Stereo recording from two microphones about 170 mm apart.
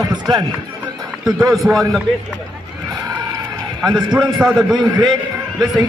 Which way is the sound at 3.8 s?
5° right (ahead or behind).